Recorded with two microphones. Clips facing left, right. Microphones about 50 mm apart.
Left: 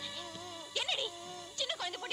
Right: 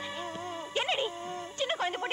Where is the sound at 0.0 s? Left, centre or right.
Right.